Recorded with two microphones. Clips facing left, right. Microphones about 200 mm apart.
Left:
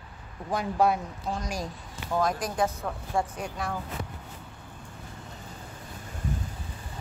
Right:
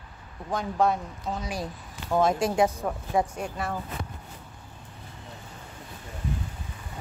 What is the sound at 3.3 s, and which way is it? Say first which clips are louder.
Speech: right 2 dB; 5° right (ahead or behind).